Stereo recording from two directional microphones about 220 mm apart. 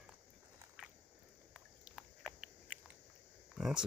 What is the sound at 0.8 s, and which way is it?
Walk, 5° right (ahead or behind).